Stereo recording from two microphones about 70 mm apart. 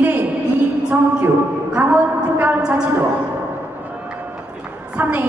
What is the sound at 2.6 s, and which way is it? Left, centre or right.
Speech, centre.